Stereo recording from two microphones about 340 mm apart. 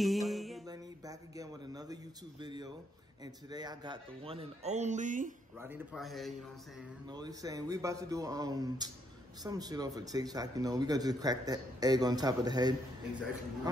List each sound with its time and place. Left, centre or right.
0.0 s music: centre
0.7 s speech: centre
5.6 s a man's voice: centre
7.1 s speech: centre